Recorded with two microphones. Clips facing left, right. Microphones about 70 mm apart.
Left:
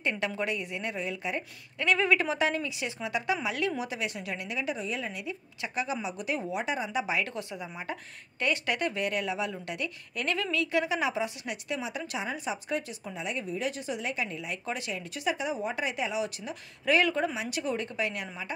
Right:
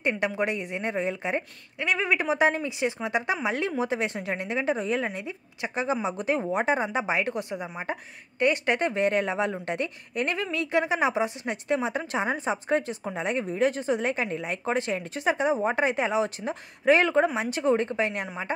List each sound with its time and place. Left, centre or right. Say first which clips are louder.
0.0 s speech: right 5 dB; right
1.8 s a woman's voice: even; centre; by 5.2 s right
5.2 s a woman's voice: right 3 dB; right